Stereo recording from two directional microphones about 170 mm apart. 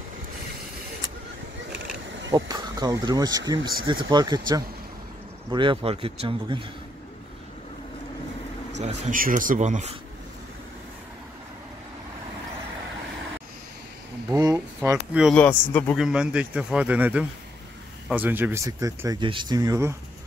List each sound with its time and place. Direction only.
2.3 s speech: 25° right (ahead or behind)
8.8 s speech: 55° right (ahead or behind)
14.3 s a sound: 15° right (ahead or behind)
15.3 s speech: 10° left (ahead or behind)
16.0 s speech: 5° right (ahead or behind)